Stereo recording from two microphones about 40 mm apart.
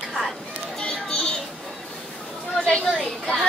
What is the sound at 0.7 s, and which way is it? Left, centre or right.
Children playing, centre.